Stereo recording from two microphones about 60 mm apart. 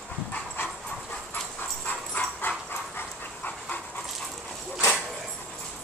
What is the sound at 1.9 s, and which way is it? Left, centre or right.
Dog, left.